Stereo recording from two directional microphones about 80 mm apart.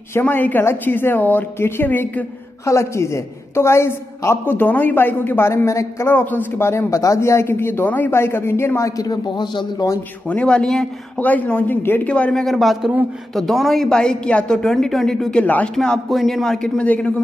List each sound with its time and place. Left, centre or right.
0.2 s a woman's voice: left
2.6 s speech: left
6.1 s speech: left
10.2 s speech: centre
11.1 s a woman's voice: centre
12.1 s a woman's voice: centre
15.4 s a woman's voice: centre
15.7 s a woman's voice: centre